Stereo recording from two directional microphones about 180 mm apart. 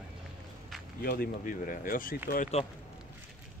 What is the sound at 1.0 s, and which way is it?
Speech, 55° left (ahead or behind).